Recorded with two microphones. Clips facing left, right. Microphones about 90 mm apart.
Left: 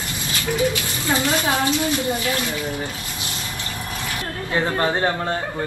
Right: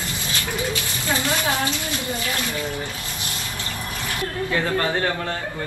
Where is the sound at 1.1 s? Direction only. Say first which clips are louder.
Left 3 dB; 20° left (ahead or behind).